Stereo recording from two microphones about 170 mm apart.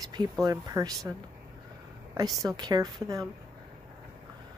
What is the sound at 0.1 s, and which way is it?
Speech, 25° right (ahead or behind).